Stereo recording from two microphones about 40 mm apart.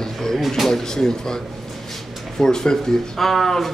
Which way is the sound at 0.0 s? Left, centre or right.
Centre.